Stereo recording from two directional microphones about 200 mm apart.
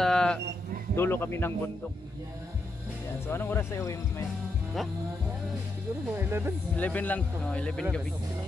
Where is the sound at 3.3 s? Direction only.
10° left (ahead or behind).